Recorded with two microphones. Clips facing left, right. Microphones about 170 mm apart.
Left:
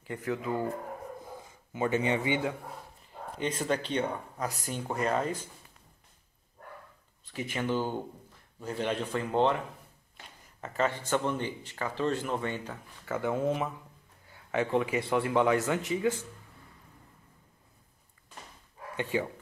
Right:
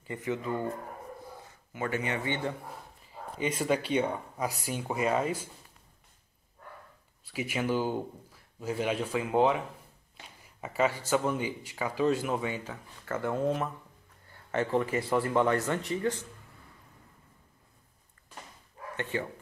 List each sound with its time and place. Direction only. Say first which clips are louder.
0.0 s speech: even; centre (ahead or behind)
1.7 s speech: left 4 dB; 20° left (ahead or behind)
2.2 s speech: left 3 dB; 10° left (ahead or behind)
3.3 s speech: right 2 dB; 10° right (ahead or behind)
7.2 s speech: right 1 dB; 10° right (ahead or behind)
10.6 s speech: right 2 dB; 10° right (ahead or behind)
18.9 s speech: left 3 dB; 15° left (ahead or behind)